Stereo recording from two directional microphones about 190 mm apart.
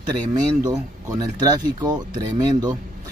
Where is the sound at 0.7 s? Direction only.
20° right (ahead or behind).